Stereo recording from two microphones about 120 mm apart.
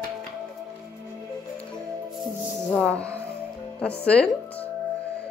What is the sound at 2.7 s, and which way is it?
Music, 5° left (ahead or behind).